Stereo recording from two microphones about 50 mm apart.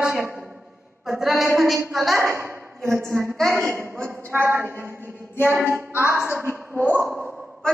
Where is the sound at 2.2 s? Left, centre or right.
Right.